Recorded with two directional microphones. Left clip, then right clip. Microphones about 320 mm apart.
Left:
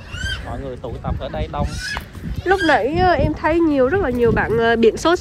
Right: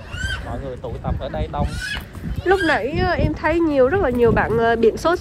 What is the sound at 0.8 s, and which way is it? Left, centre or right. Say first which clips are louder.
Speech: even; left.